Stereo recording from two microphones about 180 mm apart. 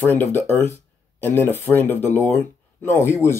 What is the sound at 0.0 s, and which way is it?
Speech, 10° left (ahead or behind).